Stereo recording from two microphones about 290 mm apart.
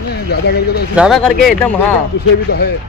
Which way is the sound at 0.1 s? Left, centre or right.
Left.